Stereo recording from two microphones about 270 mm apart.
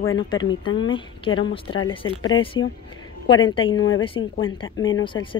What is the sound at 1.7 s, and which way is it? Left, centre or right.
Speech, left.